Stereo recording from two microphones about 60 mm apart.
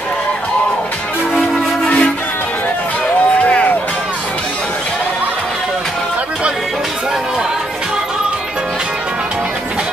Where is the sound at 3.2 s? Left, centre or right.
Left.